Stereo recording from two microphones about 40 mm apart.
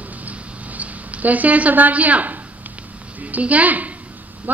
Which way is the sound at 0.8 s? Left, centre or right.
Right.